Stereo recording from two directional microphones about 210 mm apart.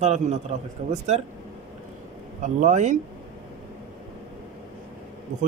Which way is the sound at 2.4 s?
35° right (ahead or behind).